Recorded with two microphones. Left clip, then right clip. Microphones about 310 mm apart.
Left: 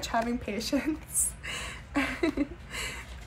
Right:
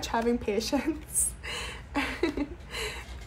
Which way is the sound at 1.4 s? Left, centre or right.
Centre.